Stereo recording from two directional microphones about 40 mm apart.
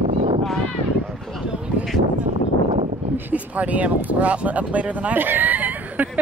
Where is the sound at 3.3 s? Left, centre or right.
Right.